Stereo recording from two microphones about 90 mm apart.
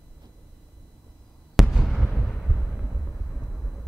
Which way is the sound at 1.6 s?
5° right (ahead or behind).